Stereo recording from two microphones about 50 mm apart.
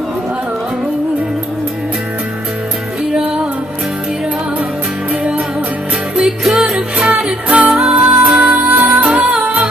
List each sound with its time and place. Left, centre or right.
6.2 s music: centre
7.4 s music: right
8.6 s music: right